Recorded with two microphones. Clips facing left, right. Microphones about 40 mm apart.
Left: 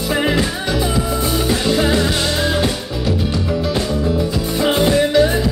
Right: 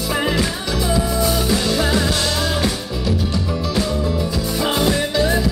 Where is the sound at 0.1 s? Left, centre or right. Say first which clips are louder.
Left 3 dB; left.